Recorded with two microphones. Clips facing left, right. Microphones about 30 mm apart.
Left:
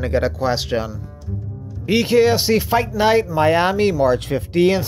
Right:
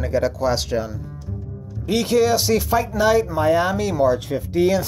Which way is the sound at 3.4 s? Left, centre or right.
Left.